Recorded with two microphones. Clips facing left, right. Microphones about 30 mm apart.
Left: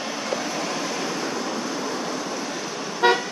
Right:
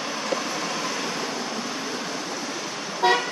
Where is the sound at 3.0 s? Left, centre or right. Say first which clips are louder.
Left 1 dB; centre.